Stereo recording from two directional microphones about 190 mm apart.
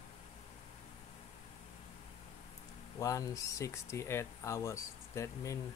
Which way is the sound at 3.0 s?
15° left (ahead or behind).